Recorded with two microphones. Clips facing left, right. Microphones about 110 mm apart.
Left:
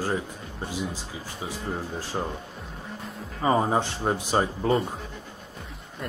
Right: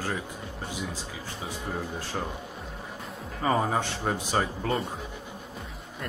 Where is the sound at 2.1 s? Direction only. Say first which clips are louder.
Left 3 dB; 15° left (ahead or behind).